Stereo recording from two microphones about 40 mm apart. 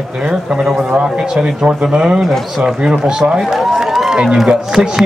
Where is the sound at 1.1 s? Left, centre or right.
Right.